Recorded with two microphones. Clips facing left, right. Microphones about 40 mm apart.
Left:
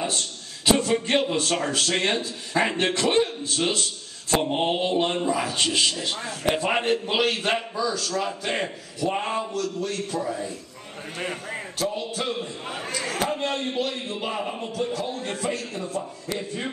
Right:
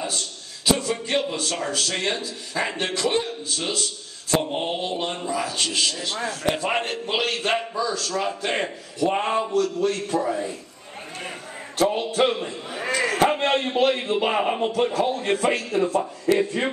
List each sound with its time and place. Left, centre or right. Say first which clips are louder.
0.7 s a man's voice: left 2 dB; centre
11.8 s a man's voice: right 8 dB; right